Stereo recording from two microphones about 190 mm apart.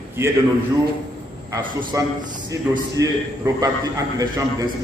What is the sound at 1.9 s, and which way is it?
A man's voice, 15° right (ahead or behind).